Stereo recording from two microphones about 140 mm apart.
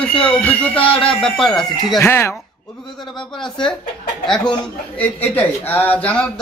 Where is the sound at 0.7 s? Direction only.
40° left (ahead or behind).